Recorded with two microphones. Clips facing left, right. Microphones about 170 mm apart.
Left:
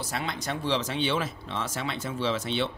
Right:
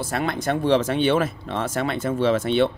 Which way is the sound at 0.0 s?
55° right (ahead or behind).